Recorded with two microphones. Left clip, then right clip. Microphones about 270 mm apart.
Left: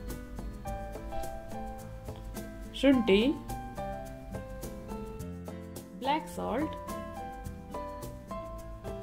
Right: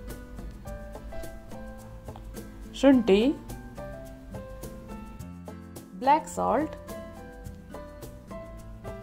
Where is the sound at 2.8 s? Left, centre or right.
Centre.